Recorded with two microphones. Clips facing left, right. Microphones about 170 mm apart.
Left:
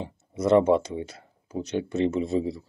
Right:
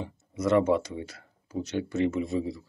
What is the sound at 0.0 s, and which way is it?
Speech, 30° left (ahead or behind).